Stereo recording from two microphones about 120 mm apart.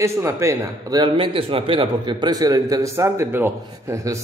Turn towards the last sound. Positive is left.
turn(degrees=-25)  # may be behind; listen again after turning